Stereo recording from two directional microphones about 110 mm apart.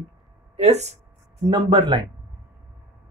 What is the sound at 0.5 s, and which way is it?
Speech, 85° right.